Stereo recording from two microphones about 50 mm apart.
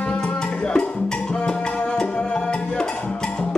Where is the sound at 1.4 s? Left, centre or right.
Centre.